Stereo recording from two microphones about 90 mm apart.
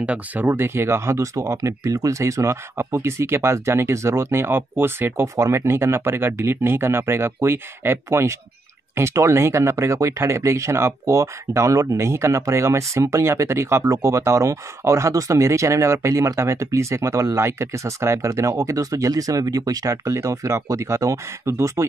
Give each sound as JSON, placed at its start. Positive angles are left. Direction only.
{"t": 0.0, "sound": "speech", "side_deg": -20}